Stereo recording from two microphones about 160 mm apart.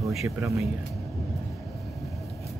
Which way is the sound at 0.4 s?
20° right (ahead or behind).